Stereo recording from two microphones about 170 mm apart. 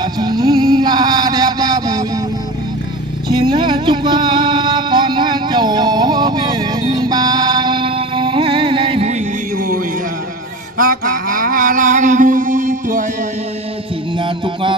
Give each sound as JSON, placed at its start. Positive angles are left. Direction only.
{"t": 0.0, "sound": "music", "side_deg": -25}
{"t": 3.3, "sound": "music", "side_deg": -25}
{"t": 10.8, "sound": "a sound", "side_deg": -55}
{"t": 14.1, "sound": "music", "side_deg": -30}